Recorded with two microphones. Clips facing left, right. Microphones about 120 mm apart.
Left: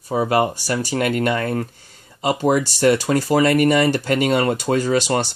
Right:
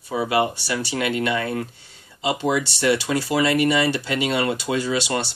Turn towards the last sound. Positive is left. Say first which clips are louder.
# left 5 dB
turn(degrees=45)  # may be behind; listen again after turning